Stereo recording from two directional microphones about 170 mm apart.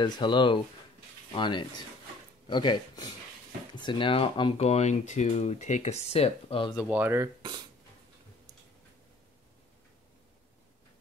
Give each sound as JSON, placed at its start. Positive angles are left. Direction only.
{"t": 0.0, "sound": "speech", "side_deg": 25}
{"t": 6.9, "sound": "speech", "side_deg": -10}